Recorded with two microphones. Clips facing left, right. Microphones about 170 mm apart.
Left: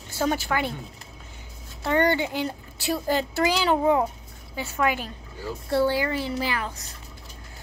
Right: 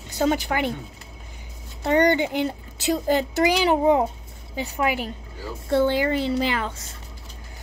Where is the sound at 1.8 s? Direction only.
20° right (ahead or behind).